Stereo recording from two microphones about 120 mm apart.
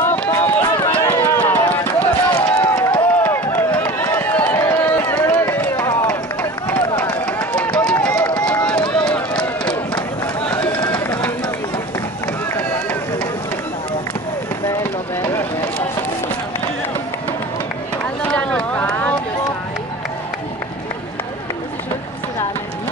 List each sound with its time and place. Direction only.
0.0 s run: 20° left (ahead or behind)
0.9 s a sound: 15° left (ahead or behind)
6.7 s run: 10° left (ahead or behind)
18.2 s run: 10° left (ahead or behind)